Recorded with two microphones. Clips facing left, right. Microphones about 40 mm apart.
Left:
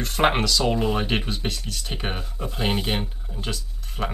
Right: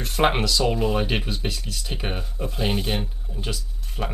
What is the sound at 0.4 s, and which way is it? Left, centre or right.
Speech, centre.